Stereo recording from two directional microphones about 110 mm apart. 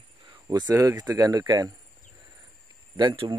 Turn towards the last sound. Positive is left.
turn(degrees=-45)  # may be behind; listen again after turning